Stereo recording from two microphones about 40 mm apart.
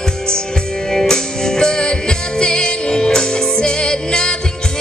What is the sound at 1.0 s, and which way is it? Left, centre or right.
Music, centre.